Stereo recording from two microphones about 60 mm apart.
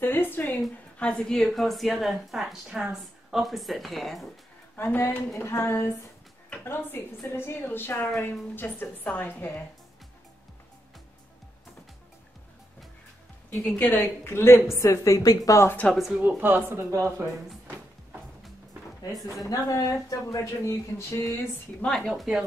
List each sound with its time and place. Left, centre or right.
0.0 s a woman's voice: left
0.9 s a woman's voice: centre
4.9 s a woman's voice: left
5.3 s a woman's voice: left
8.1 s a woman's voice: left
13.5 s a woman's voice: left
15.9 s speech: centre
16.2 s speech: right
19.5 s speech: left
21.9 s a woman's voice: centre